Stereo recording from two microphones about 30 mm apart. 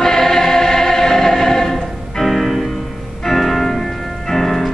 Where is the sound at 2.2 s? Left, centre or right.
Centre.